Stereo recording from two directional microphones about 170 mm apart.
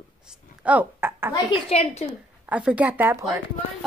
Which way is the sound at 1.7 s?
35° left (ahead or behind).